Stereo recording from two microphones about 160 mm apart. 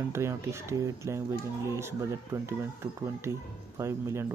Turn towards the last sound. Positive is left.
turn(degrees=-15)  # may be behind; listen again after turning